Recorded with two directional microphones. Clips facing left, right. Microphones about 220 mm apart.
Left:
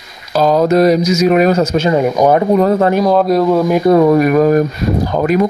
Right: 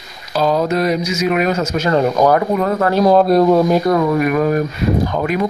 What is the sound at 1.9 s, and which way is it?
Speech, 15° left (ahead or behind).